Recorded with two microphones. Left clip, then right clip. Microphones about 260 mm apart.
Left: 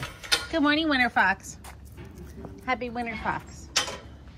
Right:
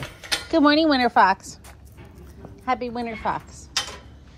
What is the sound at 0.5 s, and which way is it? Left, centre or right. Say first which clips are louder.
A woman's voice: right 9 dB; right.